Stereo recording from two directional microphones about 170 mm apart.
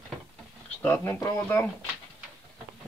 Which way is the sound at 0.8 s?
20° left (ahead or behind).